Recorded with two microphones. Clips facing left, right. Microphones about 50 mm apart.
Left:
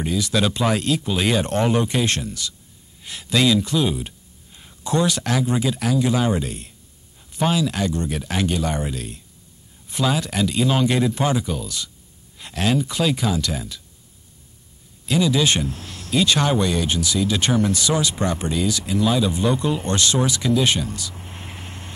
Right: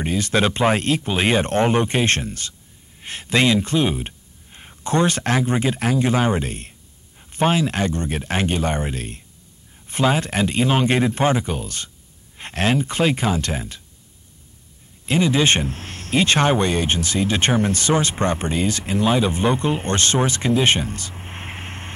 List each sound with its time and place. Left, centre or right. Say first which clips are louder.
0.0 s speech: right 2 dB; right
15.0 s speech: right 1 dB; right